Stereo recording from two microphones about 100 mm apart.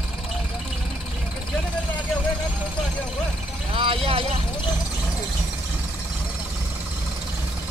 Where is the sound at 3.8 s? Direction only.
65° right (ahead or behind).